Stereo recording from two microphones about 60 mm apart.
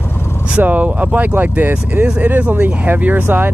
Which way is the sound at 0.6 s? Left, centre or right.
Right.